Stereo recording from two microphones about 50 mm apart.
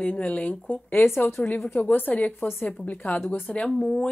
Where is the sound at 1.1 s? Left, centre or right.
Left.